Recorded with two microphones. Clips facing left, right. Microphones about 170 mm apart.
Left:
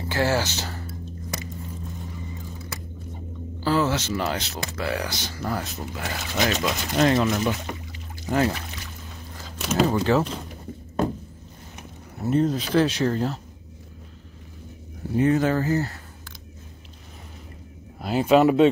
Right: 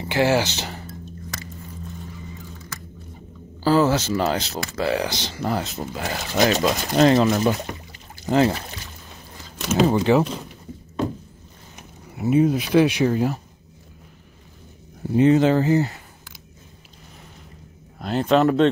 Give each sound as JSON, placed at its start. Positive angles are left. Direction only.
{"t": 0.1, "sound": "speech", "side_deg": -15}
{"t": 0.6, "sound": "music", "side_deg": -15}
{"t": 3.6, "sound": "speech", "side_deg": -40}
{"t": 9.6, "sound": "a sound", "side_deg": 0}
{"t": 10.1, "sound": "speech", "side_deg": -15}
{"t": 12.2, "sound": "speech", "side_deg": -10}
{"t": 15.1, "sound": "speech", "side_deg": -20}
{"t": 17.9, "sound": "speech", "side_deg": 5}